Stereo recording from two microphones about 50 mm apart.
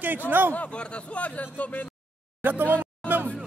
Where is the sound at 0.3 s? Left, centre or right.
Right.